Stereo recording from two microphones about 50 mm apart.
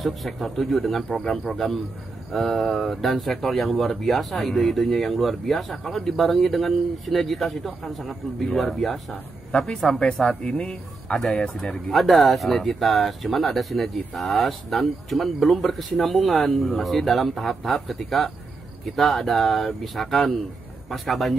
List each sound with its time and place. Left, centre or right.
0.0 s speech: centre
9.5 s speech: centre
9.8 s speech: centre
10.6 s speech: left
11.1 s speech: centre